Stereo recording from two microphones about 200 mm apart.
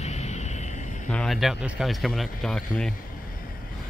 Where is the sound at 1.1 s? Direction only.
Centre (ahead or behind).